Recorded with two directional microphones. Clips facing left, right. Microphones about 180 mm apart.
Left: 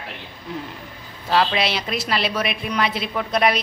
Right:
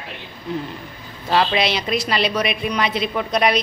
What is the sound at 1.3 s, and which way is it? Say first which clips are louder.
A woman's voice: right 1 dB; 5° left (ahead or behind).